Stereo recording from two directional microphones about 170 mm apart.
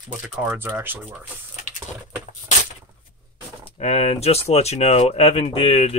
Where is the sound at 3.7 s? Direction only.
35° left (ahead or behind).